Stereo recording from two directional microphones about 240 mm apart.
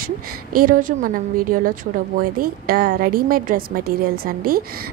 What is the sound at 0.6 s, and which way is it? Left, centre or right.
A woman's voice, right.